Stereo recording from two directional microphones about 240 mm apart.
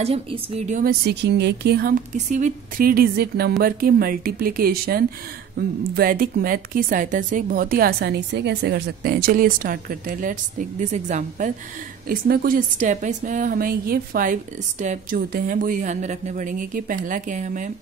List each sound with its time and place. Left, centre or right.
0.0 s speech: right